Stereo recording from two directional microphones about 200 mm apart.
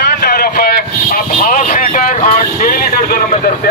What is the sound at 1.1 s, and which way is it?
Vehicle, 40° left (ahead or behind).